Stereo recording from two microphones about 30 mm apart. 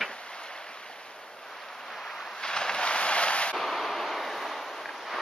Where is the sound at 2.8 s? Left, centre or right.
Left.